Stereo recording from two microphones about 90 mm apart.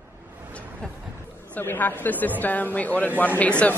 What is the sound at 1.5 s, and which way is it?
A man's voice, 20° left (ahead or behind).